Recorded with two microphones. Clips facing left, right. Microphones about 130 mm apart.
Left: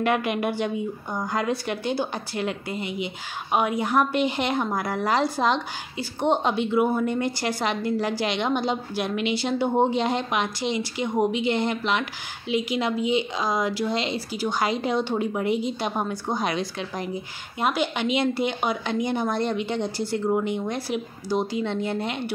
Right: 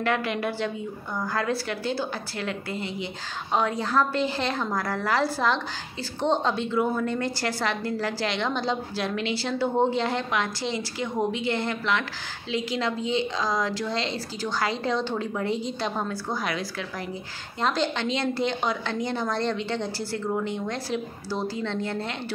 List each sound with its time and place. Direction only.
0.0 s a woman's voice: 15° left (ahead or behind)